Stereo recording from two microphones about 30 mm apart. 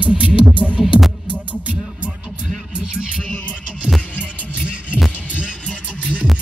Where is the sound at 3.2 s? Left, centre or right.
Left.